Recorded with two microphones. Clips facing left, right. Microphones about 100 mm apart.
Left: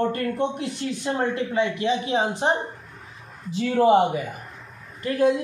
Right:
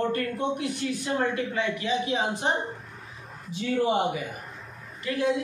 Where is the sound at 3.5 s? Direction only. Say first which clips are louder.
Left 5 dB; 90° left.